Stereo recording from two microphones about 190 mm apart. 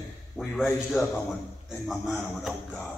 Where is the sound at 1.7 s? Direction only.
5° left (ahead or behind).